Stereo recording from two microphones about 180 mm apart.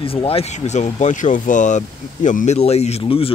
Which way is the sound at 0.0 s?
30° left (ahead or behind).